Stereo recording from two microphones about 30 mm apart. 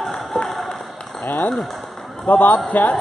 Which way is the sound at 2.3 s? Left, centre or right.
Left.